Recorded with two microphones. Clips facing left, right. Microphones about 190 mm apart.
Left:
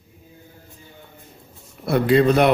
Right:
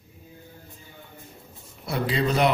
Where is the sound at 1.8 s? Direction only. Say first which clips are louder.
Left 9 dB; 60° left (ahead or behind).